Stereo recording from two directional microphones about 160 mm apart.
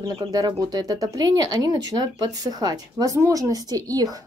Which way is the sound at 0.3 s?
25° right (ahead or behind).